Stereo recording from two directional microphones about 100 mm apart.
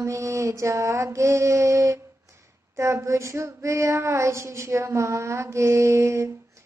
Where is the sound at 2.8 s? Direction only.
30° right (ahead or behind).